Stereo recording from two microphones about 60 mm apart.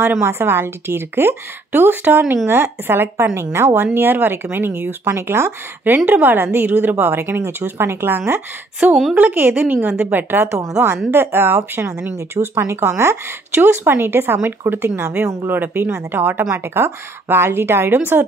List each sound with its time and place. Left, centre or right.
0.1 s a woman's voice: right
6.0 s a woman's voice: right